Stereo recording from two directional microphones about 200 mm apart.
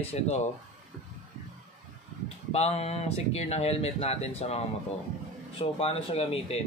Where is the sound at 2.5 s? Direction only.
30° left (ahead or behind).